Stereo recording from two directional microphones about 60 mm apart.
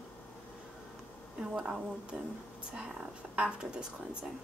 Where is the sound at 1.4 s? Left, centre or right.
Centre.